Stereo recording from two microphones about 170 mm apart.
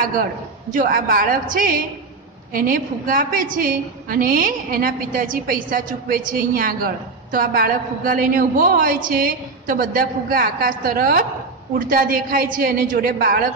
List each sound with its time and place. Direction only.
0.0 s a woman's voice: 55° right (ahead or behind)